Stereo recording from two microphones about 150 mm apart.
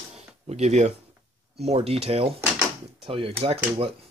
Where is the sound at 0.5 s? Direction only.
50° right (ahead or behind).